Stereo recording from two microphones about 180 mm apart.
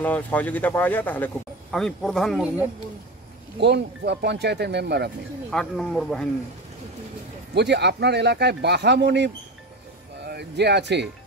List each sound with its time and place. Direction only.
0.0 s speech: 10° left (ahead or behind)
3.5 s speech: 70° right (ahead or behind)
5.5 s speech: 5° left (ahead or behind)
7.5 s speech: 70° right (ahead or behind)